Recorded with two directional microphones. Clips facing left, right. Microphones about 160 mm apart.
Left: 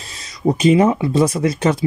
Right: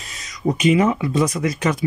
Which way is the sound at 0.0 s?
30° left (ahead or behind).